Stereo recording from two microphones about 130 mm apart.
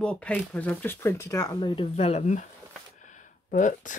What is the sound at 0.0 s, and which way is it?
Speech, 10° left (ahead or behind).